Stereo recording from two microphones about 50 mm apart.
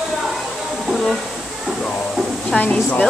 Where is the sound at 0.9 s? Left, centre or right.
Centre.